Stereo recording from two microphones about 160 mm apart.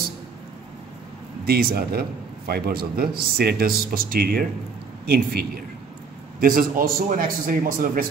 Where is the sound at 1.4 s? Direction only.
70° right (ahead or behind).